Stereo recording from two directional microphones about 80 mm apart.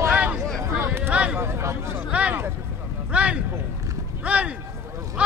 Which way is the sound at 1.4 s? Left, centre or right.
Right.